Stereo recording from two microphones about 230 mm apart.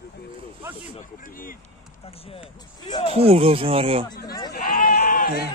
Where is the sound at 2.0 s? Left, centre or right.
Left.